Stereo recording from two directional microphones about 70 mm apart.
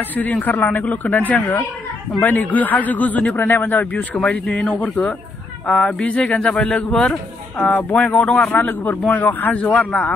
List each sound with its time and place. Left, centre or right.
0.1 s speech: left
3.3 s speech: left; by 7.2 s centre
7.5 s speech: left